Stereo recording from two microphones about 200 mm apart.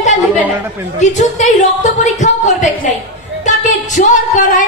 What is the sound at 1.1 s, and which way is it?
A woman's voice, 35° left (ahead or behind).